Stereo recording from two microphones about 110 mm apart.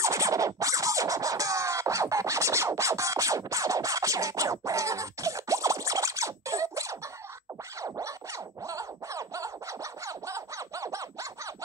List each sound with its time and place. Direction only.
0.0 s scratching: 30° right (ahead or behind)